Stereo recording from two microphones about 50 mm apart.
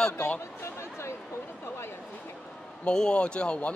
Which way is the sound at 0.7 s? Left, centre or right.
Left.